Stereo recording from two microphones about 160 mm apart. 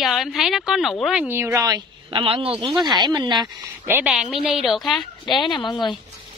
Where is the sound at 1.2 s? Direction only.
15° right (ahead or behind).